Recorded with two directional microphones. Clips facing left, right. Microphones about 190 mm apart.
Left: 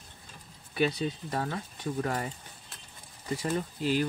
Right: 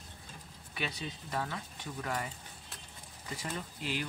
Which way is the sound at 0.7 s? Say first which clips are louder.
Left 11 dB; 40° left (ahead or behind).